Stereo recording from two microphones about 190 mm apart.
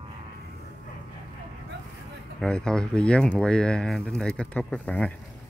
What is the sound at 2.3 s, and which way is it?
Speech, 5° left (ahead or behind).